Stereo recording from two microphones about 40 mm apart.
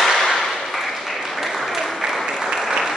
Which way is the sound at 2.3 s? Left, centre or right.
Centre.